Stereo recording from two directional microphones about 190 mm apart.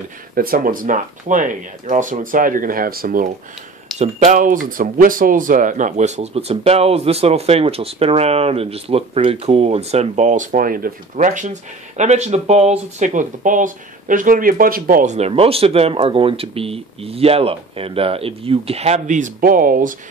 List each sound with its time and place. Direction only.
0.3 s speech: 50° right (ahead or behind)